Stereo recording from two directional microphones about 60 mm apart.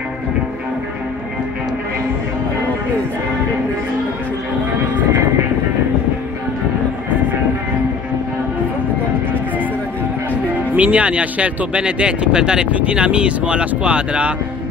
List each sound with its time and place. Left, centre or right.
10.8 s speech: right